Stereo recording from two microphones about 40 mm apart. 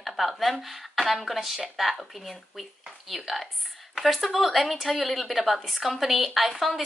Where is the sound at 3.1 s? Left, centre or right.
Centre.